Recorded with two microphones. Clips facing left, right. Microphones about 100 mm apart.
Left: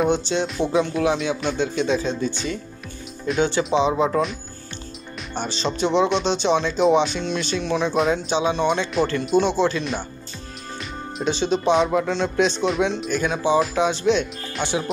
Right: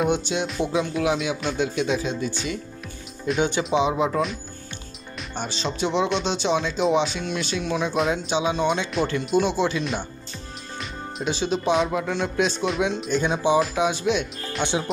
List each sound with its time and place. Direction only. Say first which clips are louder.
0.0 s speech: left 2 dB; 5° right (ahead or behind)
3.3 s speech: left 3 dB; 15° right (ahead or behind)
4.0 s speech: left 2 dB; centre (ahead or behind)
13.1 s speech: right 3 dB; 20° right (ahead or behind)
13.6 s speech: left 2 dB; 10° right (ahead or behind)